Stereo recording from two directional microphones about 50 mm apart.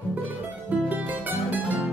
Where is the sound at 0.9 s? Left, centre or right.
Right.